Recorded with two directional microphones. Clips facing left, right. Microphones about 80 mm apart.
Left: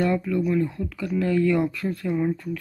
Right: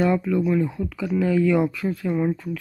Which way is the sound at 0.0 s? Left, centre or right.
Centre.